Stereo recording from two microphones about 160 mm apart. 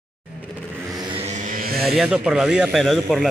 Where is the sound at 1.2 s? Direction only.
50° right (ahead or behind).